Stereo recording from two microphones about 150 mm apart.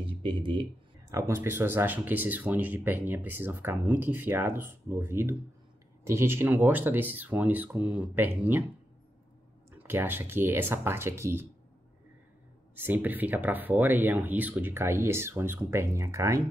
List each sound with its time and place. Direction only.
0.0 s speech: 35° right (ahead or behind)
1.1 s speech: 15° right (ahead or behind)
9.7 s speech: 15° right (ahead or behind)
12.7 s speech: 15° right (ahead or behind)